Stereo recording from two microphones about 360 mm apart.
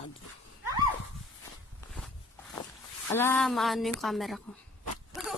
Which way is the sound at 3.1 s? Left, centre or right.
Centre.